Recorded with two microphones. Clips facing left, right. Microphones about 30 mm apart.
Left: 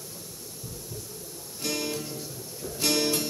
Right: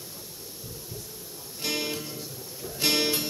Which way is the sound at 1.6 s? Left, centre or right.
Right.